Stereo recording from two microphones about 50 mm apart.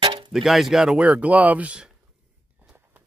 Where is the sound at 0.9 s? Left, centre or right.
Right.